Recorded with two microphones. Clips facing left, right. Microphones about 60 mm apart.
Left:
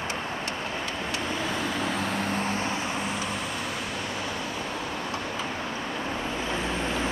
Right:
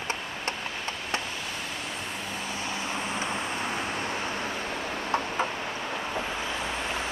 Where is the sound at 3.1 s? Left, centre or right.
Right.